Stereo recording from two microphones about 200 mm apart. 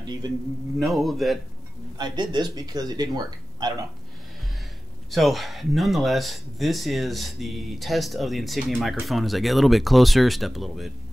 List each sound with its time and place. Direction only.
0.7 s speech: centre (ahead or behind)
2.0 s speech: 20° right (ahead or behind)
5.1 s speech: centre (ahead or behind)